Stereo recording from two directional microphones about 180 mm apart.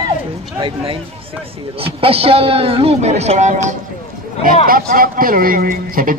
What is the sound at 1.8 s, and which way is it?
A man's voice, 30° right (ahead or behind).